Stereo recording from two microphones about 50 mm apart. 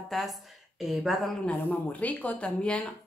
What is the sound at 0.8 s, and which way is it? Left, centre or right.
Speech, centre.